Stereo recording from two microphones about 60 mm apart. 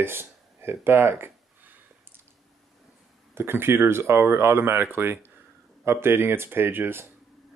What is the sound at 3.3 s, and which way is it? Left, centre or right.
Speech, right.